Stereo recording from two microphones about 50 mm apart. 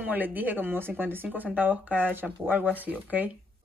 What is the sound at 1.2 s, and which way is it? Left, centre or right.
Speech, right.